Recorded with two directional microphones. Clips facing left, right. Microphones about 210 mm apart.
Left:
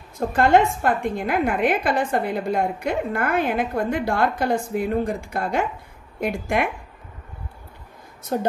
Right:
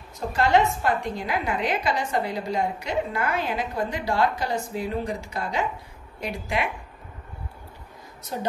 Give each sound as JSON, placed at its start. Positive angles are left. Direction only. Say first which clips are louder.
{"t": 0.3, "sound": "a woman's voice", "louder": "left 3 dB", "side_deg": 50}
{"t": 8.3, "sound": "a woman's voice", "louder": "left 7 dB", "side_deg": 50}